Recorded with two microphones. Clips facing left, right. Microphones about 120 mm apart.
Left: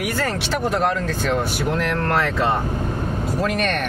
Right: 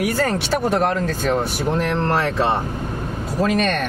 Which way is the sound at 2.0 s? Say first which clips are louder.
Right 1 dB; 25° right (ahead or behind).